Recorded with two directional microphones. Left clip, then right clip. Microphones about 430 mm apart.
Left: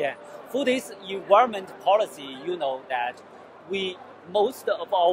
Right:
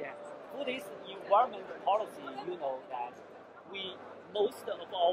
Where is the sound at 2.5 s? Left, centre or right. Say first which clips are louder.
Left 12 dB; left.